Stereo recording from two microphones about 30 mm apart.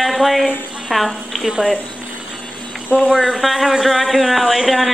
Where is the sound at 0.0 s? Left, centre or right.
Centre.